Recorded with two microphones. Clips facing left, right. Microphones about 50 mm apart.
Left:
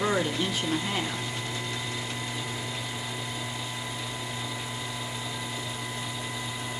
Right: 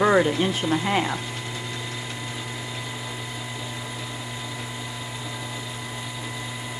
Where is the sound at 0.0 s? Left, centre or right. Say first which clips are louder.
Right 8 dB; right.